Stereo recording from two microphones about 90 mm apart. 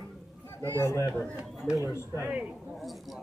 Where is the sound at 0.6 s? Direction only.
25° left (ahead or behind).